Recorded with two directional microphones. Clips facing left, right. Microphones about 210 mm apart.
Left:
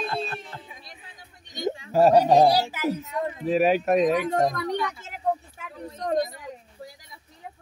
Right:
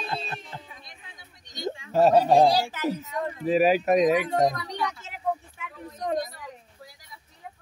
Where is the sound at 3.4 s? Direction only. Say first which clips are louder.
Right 1 dB; centre (ahead or behind).